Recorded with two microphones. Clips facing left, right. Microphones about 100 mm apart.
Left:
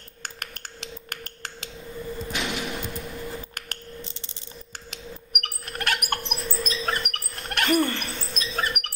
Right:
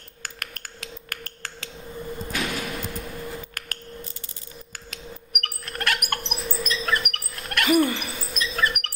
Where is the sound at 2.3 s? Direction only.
45° right (ahead or behind).